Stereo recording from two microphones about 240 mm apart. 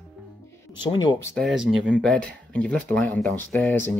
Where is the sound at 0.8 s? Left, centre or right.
Centre.